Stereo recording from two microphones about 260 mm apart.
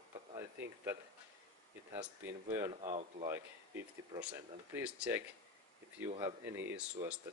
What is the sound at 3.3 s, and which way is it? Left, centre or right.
Speech, centre.